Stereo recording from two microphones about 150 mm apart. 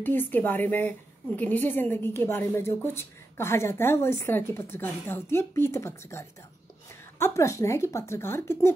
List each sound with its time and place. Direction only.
0.0 s a woman's voice: 15° left (ahead or behind)